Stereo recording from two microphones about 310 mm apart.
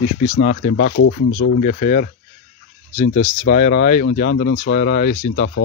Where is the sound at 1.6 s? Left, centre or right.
Left.